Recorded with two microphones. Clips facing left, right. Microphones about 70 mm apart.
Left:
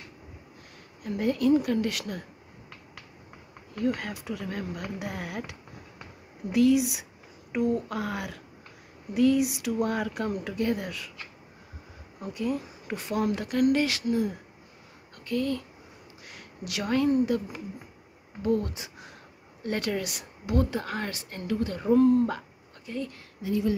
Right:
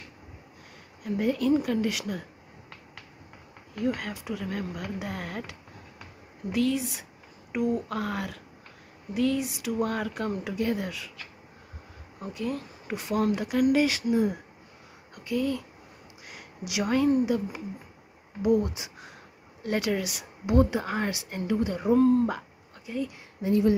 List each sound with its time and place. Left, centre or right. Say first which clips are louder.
1.0 s speech: left 1 dB; centre
3.7 s speech: left 1 dB; centre
12.2 s speech: left 2 dB; centre
15.1 s speech: right 1 dB; centre
20.4 s speech: right 4 dB; right
20.8 s speech: right 3 dB; centre
23.4 s speech: right 4 dB; right